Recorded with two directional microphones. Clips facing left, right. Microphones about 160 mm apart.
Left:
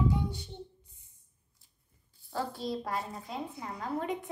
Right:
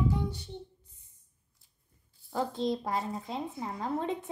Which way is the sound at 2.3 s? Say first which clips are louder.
Right 4 dB; 20° right (ahead or behind).